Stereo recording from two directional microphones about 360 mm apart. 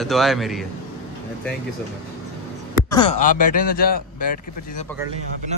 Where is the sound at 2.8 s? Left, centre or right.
Centre.